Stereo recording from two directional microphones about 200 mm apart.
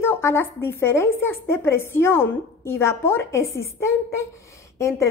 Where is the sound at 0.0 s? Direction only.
10° left (ahead or behind).